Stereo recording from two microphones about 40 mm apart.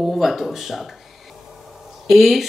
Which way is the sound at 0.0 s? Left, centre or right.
Centre.